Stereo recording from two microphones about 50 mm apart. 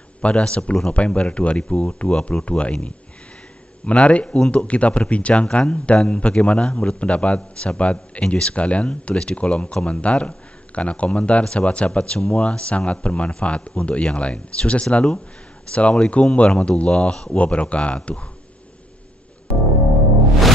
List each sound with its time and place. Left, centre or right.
0.2 s a man's voice: centre